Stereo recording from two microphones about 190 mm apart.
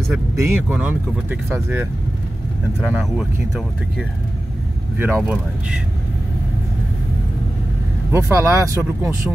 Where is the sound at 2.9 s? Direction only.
5° right (ahead or behind).